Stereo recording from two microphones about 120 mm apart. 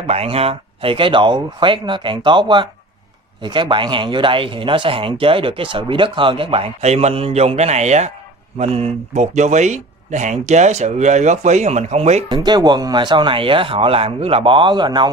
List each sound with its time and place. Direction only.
0.0 s speech: 55° right (ahead or behind)
6.8 s a man's voice: 65° right (ahead or behind)
8.5 s speech: 55° right (ahead or behind)
12.4 s speech: 35° right (ahead or behind)